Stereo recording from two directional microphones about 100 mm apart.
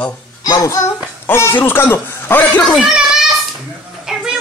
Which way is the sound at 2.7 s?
5° right (ahead or behind).